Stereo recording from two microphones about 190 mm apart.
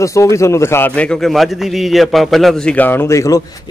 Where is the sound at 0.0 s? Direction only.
15° left (ahead or behind).